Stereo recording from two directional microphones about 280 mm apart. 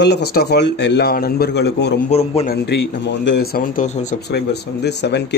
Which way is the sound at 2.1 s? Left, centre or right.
Left.